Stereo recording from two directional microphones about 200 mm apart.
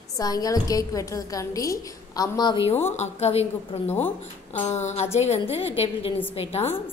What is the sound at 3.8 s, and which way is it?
Speech, 10° left (ahead or behind).